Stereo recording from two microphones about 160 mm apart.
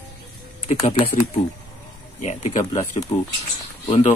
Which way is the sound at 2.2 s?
50° left (ahead or behind).